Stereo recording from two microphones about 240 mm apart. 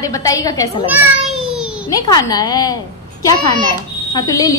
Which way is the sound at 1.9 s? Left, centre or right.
Centre.